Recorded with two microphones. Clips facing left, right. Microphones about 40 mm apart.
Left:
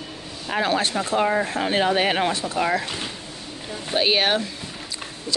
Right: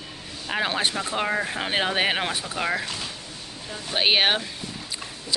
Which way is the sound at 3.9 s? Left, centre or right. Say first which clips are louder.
Left 1 dB; right.